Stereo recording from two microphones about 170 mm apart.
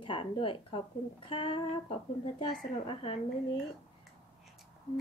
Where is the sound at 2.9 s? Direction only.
35° left (ahead or behind).